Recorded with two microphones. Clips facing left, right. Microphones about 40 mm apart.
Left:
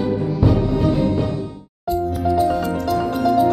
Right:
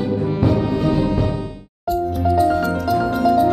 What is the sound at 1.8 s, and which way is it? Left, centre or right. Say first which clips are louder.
Music: right 1 dB; centre.